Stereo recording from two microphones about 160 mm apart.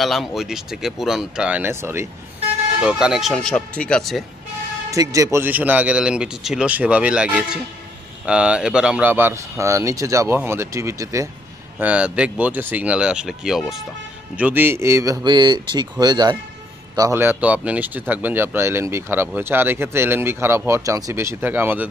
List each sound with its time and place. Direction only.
0.0 s speech: centre (ahead or behind); by 2.0 s 15° right (ahead or behind)
2.8 s speech: 5° right (ahead or behind)
4.9 s speech: 20° right (ahead or behind)
11.8 s a man's voice: 5° right (ahead or behind)